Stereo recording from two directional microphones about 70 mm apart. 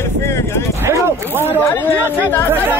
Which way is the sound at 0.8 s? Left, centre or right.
Right.